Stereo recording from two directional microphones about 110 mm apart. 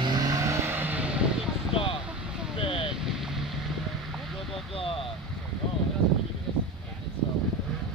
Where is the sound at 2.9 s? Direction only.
5° right (ahead or behind).